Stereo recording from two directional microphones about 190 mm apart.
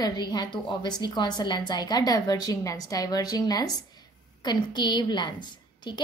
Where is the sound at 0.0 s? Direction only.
20° left (ahead or behind).